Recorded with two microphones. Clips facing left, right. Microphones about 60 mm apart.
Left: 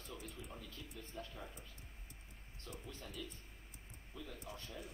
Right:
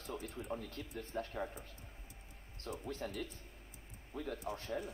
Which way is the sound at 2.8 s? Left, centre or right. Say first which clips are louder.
Right 8 dB; right.